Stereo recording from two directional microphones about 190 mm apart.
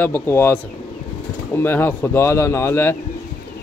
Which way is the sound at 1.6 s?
10° left (ahead or behind).